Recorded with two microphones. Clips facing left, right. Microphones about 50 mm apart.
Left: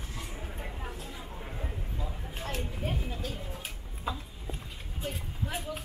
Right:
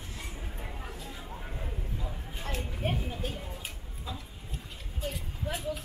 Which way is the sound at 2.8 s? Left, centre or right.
Right.